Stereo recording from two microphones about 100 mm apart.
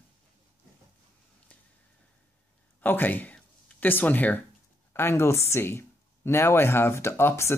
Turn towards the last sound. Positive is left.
turn(degrees=25)  # may be behind; listen again after turning